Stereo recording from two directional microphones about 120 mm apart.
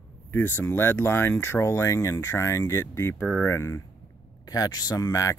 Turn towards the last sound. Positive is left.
turn(degrees=30)  # may be behind; listen again after turning